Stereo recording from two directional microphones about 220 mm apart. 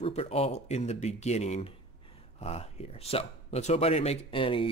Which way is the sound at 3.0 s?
30° left (ahead or behind).